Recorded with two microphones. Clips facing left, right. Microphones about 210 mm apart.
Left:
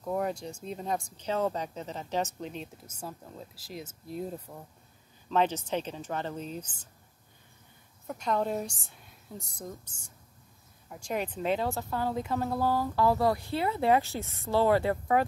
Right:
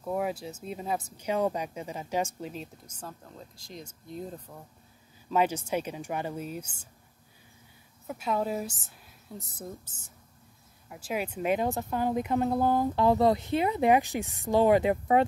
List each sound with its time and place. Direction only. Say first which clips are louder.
0.0 s speech: even; 5° right (ahead or behind)
3.0 s a woman's voice: left 2 dB; 5° left (ahead or behind)
5.3 s speech: right 1 dB; 10° right (ahead or behind)
8.1 s a woman's voice: even; 5° right (ahead or behind)